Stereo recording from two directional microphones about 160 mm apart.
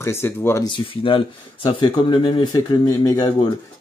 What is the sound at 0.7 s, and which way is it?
Speech, 30° left (ahead or behind).